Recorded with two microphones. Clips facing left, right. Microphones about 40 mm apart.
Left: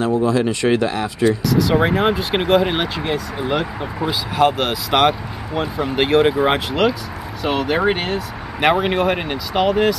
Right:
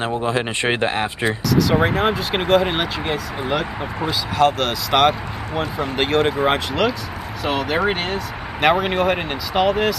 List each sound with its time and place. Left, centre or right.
0.2 s speech: right
1.5 s speech: centre